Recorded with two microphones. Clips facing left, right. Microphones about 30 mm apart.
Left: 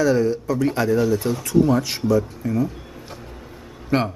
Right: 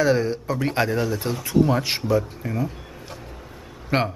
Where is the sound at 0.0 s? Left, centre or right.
Right.